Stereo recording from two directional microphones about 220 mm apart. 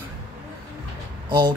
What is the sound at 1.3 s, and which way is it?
Speech, 20° right (ahead or behind).